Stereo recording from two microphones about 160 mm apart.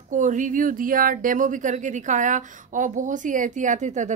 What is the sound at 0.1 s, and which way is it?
Speech, 50° right (ahead or behind).